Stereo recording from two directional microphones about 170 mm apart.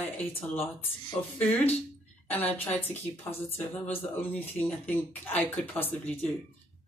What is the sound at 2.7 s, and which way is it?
Speech, 10° left (ahead or behind).